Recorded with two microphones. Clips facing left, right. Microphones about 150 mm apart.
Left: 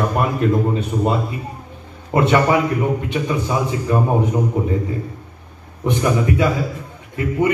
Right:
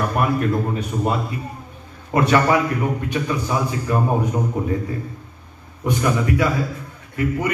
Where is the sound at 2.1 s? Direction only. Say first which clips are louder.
Left 1 dB; 20° left (ahead or behind).